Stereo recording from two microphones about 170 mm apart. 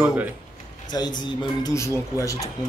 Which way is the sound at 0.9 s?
25° left (ahead or behind).